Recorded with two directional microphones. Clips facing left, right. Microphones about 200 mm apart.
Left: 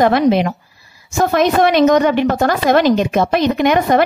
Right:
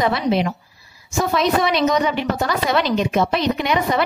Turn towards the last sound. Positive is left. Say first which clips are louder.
# left 7 dB
turn(degrees=50)  # may be behind; listen again after turning